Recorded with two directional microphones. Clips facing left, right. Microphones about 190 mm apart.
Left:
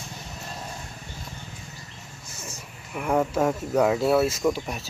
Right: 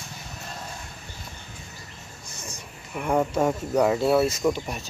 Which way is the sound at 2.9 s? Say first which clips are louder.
Even; centre (ahead or behind).